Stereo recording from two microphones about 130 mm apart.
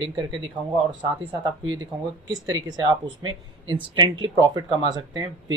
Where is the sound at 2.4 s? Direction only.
30° right (ahead or behind).